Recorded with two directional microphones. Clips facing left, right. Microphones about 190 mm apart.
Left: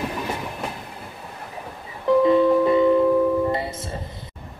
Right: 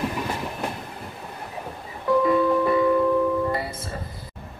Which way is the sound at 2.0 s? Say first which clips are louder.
Left 4 dB; 25° left (ahead or behind).